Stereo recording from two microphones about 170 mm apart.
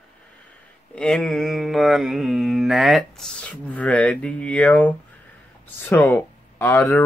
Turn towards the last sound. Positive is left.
turn(degrees=10)  # may be behind; listen again after turning